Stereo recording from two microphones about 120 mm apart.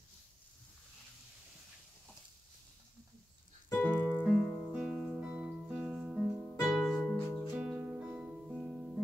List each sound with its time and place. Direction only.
3.6 s piano: 15° left (ahead or behind)
3.9 s keyboard: 35° right (ahead or behind)
4.2 s music: 5° right (ahead or behind); by 7.2 s 10° left (ahead or behind)
7.5 s music: 10° right (ahead or behind)